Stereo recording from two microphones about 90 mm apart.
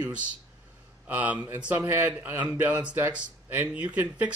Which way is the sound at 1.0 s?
15° right (ahead or behind).